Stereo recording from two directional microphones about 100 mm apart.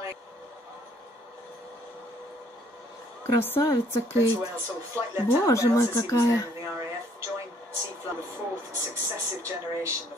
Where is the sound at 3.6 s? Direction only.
35° left (ahead or behind).